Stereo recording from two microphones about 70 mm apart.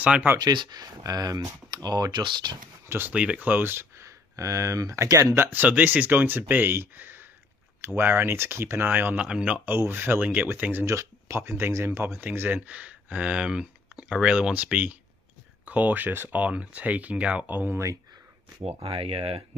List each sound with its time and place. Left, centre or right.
0.0 s speech: right
0.4 s speech: right
3.1 s speech: centre; by 5.2 s right
5.4 s speech: right
8.9 s speech: right
9.2 s speech: centre
10.9 s speech: right
12.4 s speech: right
17.5 s speech: right